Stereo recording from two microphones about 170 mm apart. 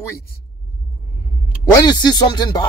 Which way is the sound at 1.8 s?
25° left (ahead or behind).